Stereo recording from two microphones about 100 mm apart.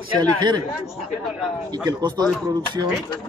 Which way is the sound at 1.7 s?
45° right (ahead or behind).